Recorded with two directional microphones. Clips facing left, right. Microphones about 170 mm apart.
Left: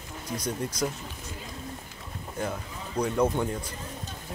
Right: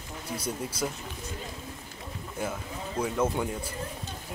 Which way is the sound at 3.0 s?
5° right (ahead or behind).